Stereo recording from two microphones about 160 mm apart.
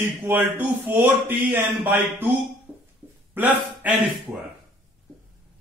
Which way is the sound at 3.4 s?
10° right (ahead or behind).